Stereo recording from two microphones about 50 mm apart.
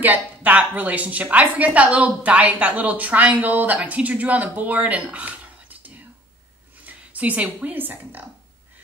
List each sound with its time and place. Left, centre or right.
0.0 s a woman's voice: right